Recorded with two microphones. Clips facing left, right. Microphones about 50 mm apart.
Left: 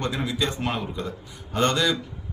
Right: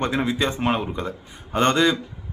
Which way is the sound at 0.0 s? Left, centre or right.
Right.